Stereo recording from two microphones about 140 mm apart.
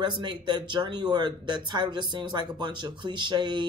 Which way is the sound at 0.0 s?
30° right (ahead or behind).